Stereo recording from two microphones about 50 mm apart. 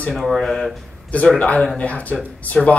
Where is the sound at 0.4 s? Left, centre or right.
Centre.